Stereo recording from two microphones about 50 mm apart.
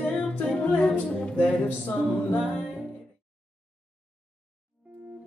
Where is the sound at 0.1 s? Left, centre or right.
Left.